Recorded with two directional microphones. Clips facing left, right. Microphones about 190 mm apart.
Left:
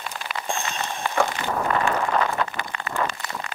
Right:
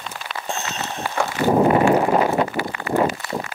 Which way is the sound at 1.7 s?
20° right (ahead or behind).